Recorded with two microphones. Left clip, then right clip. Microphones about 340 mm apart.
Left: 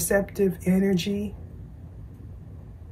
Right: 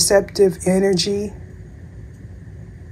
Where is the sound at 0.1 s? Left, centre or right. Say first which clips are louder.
Right 7 dB; centre.